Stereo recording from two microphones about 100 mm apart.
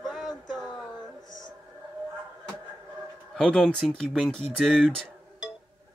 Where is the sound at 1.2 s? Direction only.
35° right (ahead or behind).